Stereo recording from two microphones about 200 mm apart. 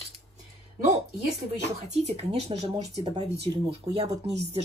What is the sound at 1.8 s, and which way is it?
Speech, 35° right (ahead or behind).